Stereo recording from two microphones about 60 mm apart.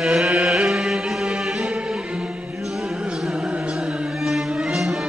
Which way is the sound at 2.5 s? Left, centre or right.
Centre.